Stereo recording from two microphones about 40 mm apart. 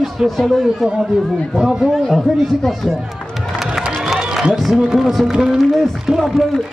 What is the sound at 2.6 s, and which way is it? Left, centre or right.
Speech, centre.